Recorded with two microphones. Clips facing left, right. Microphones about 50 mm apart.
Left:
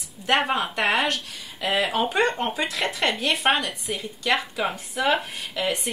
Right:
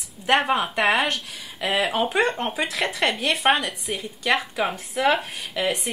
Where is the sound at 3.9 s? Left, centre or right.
Centre.